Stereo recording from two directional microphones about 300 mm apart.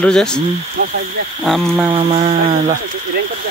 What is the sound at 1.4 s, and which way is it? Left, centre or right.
Speech, centre.